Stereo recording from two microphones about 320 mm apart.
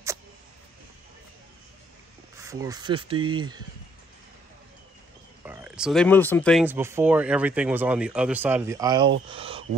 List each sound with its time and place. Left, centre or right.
2.3 s speech: centre
5.4 s speech: centre
9.3 s a sound: centre